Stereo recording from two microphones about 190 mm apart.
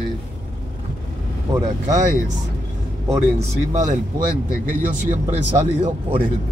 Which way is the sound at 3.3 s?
40° right (ahead or behind).